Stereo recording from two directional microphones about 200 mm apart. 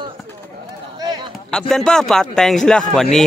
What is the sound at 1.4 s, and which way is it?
A man's voice, 5° left (ahead or behind).